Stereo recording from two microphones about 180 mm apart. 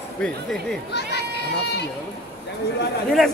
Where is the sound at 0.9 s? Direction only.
70° left (ahead or behind).